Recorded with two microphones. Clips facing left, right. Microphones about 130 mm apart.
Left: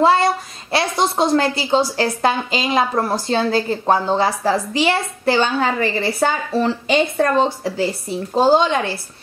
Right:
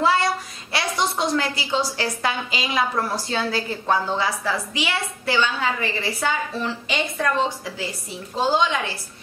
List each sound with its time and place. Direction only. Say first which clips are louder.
0.0 s a child's voice: left 6 dB; 30° left (ahead or behind)